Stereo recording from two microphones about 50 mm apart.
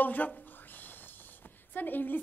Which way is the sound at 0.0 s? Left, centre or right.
Left.